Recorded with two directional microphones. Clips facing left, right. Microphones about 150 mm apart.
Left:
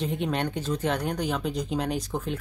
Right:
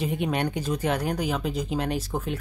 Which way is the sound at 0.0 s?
10° right (ahead or behind).